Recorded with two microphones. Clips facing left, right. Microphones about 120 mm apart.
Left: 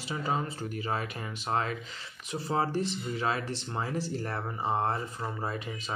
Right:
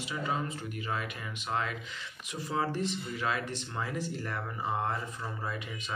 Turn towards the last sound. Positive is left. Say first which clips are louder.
# left 3 dB
turn(degrees=30)  # may be behind; listen again after turning